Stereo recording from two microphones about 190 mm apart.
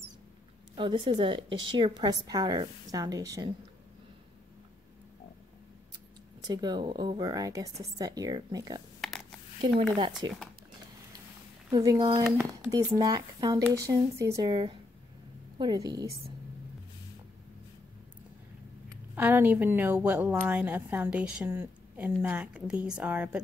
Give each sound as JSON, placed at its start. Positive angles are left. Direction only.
{"t": 0.7, "sound": "a woman's voice", "side_deg": -25}
{"t": 6.4, "sound": "a woman's voice", "side_deg": -20}
{"t": 9.9, "sound": "a woman's voice", "side_deg": -25}
{"t": 11.7, "sound": "a woman's voice", "side_deg": -20}
{"t": 12.4, "sound": "speech", "side_deg": -5}
{"t": 13.0, "sound": "a woman's voice", "side_deg": -20}
{"t": 19.1, "sound": "a woman's voice", "side_deg": -10}